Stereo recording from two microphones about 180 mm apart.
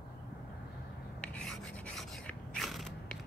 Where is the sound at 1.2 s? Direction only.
5° left (ahead or behind).